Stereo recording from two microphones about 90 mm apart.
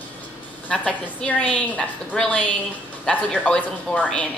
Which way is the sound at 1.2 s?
15° left (ahead or behind).